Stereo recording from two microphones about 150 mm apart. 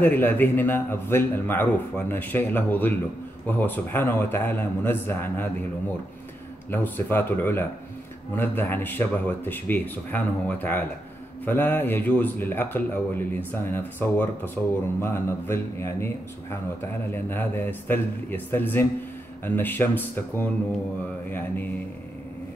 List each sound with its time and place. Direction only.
0.0 s a man's voice: 10° left (ahead or behind)
6.7 s a man's voice: 15° left (ahead or behind)
17.1 s a man's voice: 15° left (ahead or behind)